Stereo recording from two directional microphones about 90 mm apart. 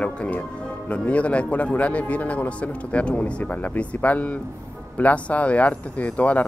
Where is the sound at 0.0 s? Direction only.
15° left (ahead or behind).